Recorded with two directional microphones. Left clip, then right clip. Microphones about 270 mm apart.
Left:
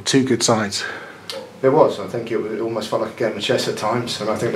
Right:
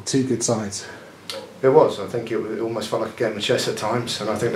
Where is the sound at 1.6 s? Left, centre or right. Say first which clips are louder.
Left 1 dB; centre.